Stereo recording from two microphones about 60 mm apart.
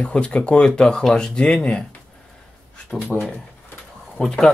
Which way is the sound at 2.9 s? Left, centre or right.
Centre.